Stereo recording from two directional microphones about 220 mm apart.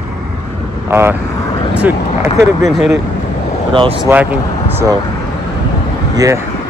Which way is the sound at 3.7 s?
20° right (ahead or behind).